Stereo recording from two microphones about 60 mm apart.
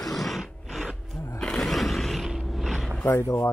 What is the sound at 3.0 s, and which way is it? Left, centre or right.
Speech, left.